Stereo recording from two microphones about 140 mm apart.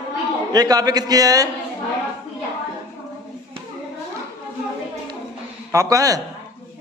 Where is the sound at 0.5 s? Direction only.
30° right (ahead or behind).